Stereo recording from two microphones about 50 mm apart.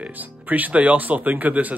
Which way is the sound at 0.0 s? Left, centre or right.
Right.